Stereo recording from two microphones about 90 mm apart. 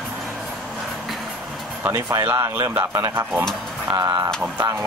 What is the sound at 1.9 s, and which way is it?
Speech, 35° right (ahead or behind).